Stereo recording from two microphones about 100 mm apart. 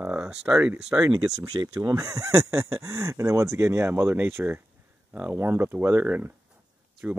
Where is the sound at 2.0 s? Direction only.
30° right (ahead or behind).